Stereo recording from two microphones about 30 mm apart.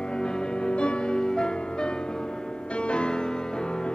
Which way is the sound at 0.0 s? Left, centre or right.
Left.